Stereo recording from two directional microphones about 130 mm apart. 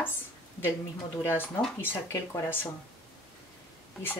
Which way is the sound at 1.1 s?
15° left (ahead or behind).